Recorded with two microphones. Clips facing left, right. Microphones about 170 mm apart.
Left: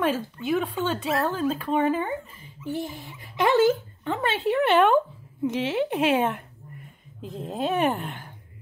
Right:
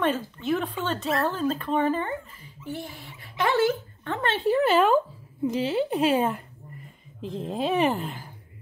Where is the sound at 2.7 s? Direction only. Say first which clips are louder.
Left 5 dB; 20° left (ahead or behind); by 8.3 s centre (ahead or behind).